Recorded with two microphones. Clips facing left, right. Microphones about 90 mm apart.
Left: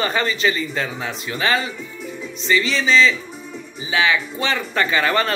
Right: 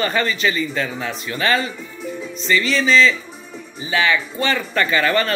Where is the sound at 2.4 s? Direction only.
20° left (ahead or behind).